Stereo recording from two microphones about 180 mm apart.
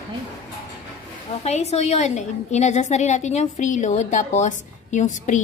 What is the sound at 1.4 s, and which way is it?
A woman's voice, 35° left (ahead or behind).